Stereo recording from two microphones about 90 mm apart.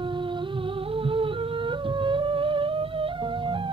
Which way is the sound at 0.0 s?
65° right (ahead or behind).